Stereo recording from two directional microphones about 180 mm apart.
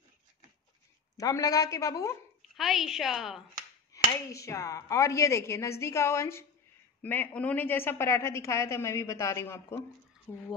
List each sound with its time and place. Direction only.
1.1 s a woman's voice: 20° left (ahead or behind)
2.5 s a woman's voice: centre (ahead or behind)
3.9 s a woman's voice: 15° left (ahead or behind)